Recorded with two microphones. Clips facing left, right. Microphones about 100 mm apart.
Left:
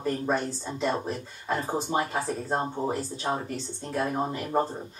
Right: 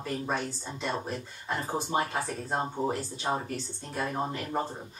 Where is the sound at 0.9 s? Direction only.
15° left (ahead or behind); by 3.4 s 5° right (ahead or behind).